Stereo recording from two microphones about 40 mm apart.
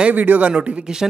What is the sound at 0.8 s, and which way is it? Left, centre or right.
Speech, centre.